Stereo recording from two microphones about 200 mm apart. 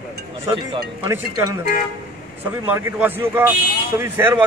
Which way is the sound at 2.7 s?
10° right (ahead or behind).